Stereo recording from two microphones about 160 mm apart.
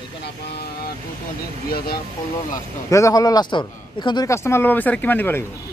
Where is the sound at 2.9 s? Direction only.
20° left (ahead or behind).